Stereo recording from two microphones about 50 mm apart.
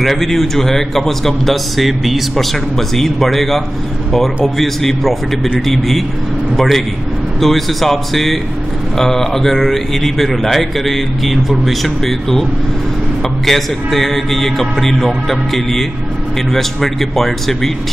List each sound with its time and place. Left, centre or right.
0.0 s a man's voice: centre
13.5 s a man's voice: centre